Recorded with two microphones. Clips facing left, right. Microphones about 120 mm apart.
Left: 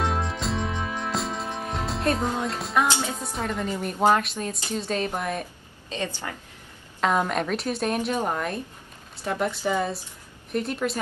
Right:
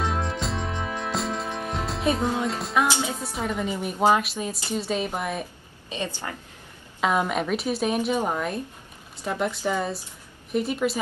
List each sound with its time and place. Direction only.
0.0 s music: centre (ahead or behind)
2.9 s a woman's voice: 15° right (ahead or behind)
3.2 s a woman's voice: 5° right (ahead or behind)
5.9 s a woman's voice: 15° right (ahead or behind)
7.0 s a woman's voice: 5° right (ahead or behind)